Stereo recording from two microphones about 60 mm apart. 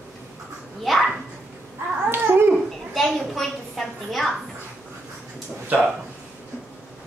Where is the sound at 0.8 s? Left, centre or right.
Centre.